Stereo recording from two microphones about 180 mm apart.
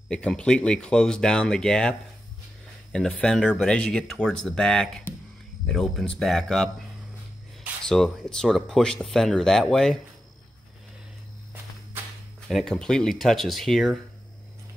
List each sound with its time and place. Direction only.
0.1 s speech: 5° left (ahead or behind)
7.8 s speech: 5° left (ahead or behind)
12.4 s speech: centre (ahead or behind)